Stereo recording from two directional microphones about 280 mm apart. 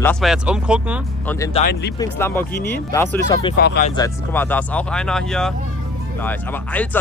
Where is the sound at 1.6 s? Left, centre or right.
Left.